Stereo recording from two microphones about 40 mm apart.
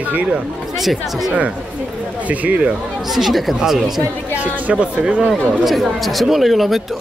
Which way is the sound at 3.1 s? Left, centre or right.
Centre.